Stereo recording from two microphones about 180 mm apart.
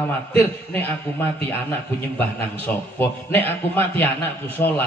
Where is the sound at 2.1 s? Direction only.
10° left (ahead or behind).